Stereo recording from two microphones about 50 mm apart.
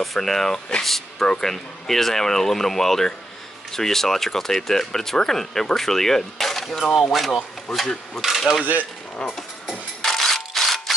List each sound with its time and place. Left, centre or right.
0.0 s speech: centre
9.2 s speech: centre
9.7 s a sound: centre